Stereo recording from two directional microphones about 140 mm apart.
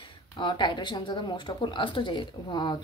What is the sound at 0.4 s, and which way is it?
A woman's voice, 35° left (ahead or behind).